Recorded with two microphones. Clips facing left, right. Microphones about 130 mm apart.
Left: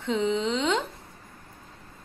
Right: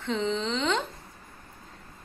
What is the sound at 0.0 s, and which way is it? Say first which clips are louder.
Speech: left 3 dB; 15° left (ahead or behind).